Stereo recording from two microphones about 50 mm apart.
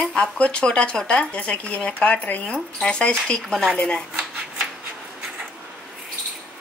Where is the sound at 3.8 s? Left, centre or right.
Left.